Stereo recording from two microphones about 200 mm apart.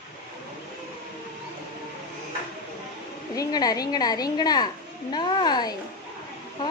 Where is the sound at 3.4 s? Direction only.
20° left (ahead or behind).